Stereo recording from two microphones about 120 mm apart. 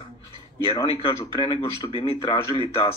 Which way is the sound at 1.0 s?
45° left (ahead or behind).